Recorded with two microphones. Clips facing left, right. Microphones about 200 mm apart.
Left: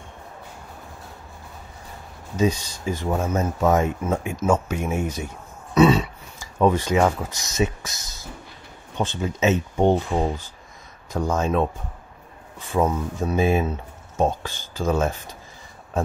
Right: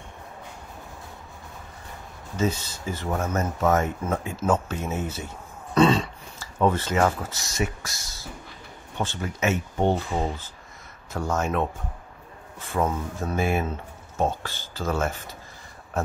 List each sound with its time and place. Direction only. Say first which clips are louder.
2.3 s speech: left 4 dB; 15° left (ahead or behind)
5.8 s a sound: left 3 dB; 5° left (ahead or behind)
7.2 s speech: left 5 dB; 15° left (ahead or behind)